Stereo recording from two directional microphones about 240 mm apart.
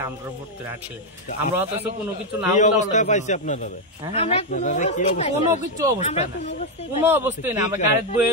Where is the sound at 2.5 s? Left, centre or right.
Left.